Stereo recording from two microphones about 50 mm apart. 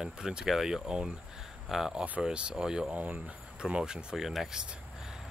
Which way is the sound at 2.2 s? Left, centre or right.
Centre.